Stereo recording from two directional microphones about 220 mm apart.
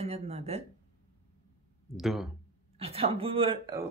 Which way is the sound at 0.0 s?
30° right (ahead or behind).